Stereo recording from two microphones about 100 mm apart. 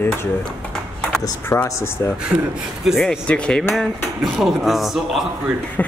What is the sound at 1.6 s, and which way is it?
Speech, 25° left (ahead or behind).